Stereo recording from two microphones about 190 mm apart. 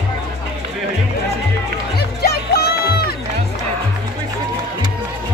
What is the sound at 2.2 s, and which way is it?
Music, 55° left (ahead or behind).